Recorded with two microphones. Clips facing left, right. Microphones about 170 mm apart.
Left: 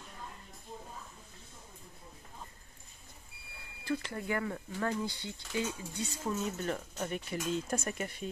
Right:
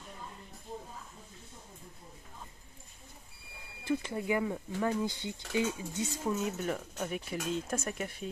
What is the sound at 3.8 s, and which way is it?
Speech, 15° right (ahead or behind).